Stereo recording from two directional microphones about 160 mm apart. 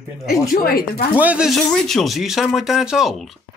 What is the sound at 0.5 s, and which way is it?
Speech, 65° left (ahead or behind).